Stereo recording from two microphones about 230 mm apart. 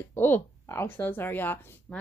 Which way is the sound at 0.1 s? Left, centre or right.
Centre.